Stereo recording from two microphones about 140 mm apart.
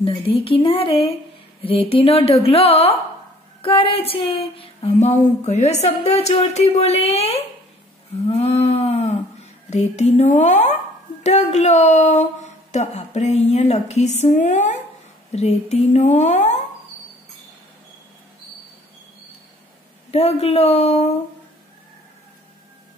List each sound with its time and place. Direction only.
0.0 s speech: 40° left (ahead or behind); by 14.7 s 60° left (ahead or behind)
15.3 s speech: 50° left (ahead or behind)
20.1 s speech: 50° left (ahead or behind)